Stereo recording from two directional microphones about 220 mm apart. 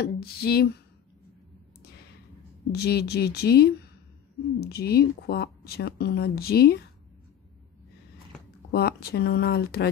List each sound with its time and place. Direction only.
0.0 s speech: 45° left (ahead or behind)
1.8 s a sound: 45° left (ahead or behind)
2.7 s speech: 45° left (ahead or behind)
8.7 s speech: 45° left (ahead or behind)